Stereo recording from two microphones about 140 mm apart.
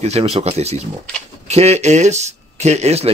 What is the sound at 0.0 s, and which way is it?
Speech, 50° right (ahead or behind).